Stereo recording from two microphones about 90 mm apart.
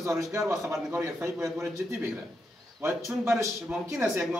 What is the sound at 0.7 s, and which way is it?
A man's voice, 30° right (ahead or behind).